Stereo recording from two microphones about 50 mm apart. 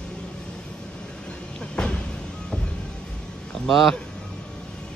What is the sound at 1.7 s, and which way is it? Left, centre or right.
Vehicle, centre.